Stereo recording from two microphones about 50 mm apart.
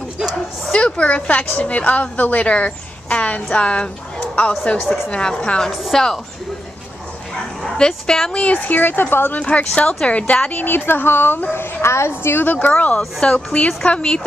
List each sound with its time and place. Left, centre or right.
0.7 s a woman's voice: left
5.7 s a woman's voice: centre
7.6 s speech: centre
8.5 s speech: left
9.4 s a woman's voice: left
10.6 s a woman's voice: left
12.1 s a woman's voice: left
12.4 s a woman's voice: left